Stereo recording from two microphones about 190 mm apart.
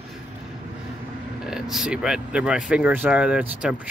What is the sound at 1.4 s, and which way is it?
Speech, centre (ahead or behind).